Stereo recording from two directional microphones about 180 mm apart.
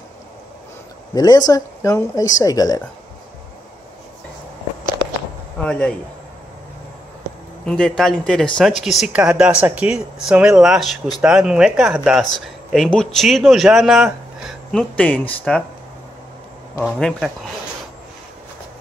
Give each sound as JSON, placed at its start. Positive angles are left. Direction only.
{"t": 1.1, "sound": "speech", "side_deg": 20}
{"t": 5.6, "sound": "speech", "side_deg": 5}
{"t": 7.6, "sound": "speech", "side_deg": 5}
{"t": 16.8, "sound": "speech", "side_deg": 0}